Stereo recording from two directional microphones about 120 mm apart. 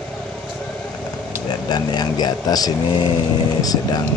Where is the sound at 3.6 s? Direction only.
30° left (ahead or behind).